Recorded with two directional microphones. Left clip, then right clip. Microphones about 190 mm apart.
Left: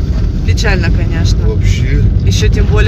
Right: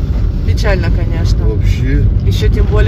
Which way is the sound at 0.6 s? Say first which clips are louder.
Left 1 dB; 10° right (ahead or behind).